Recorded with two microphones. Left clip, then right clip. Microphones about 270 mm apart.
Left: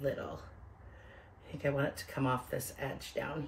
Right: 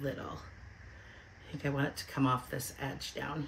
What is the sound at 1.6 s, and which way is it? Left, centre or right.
Speech, centre.